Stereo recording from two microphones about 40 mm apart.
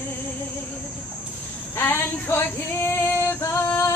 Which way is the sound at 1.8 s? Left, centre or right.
Left.